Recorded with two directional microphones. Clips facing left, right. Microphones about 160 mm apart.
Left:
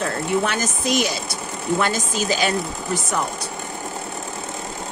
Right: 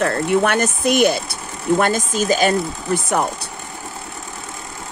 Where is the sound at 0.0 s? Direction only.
60° right (ahead or behind).